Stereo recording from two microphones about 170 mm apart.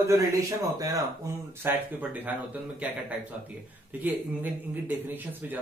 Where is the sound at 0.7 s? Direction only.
20° right (ahead or behind).